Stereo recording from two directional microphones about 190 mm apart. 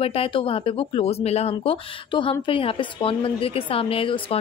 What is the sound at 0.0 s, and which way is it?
Speech, 30° left (ahead or behind).